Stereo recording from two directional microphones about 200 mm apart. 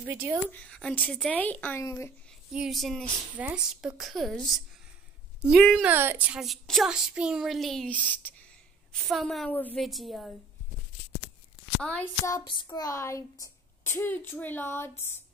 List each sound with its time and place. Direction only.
0.0 s speech: 10° right (ahead or behind)
0.5 s speech: 5° left (ahead or behind)
2.5 s a child's voice: centre (ahead or behind)
11.8 s a child's voice: 5° left (ahead or behind)
12.3 s speech: 20° left (ahead or behind)